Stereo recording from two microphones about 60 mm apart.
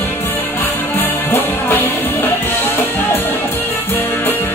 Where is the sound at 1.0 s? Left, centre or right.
Left.